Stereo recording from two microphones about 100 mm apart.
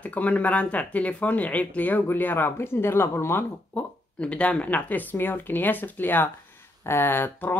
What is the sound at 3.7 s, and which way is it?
Speech, 10° left (ahead or behind).